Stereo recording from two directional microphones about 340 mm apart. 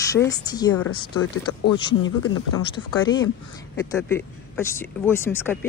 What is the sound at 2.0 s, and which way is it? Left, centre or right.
Speech, left.